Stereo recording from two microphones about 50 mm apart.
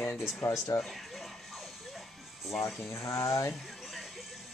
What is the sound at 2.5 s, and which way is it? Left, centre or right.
Speech, left.